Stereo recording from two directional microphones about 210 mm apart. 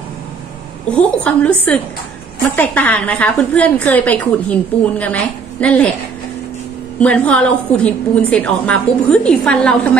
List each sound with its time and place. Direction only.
0.9 s a woman's voice: 5° left (ahead or behind)
7.0 s a woman's voice: 5° left (ahead or behind)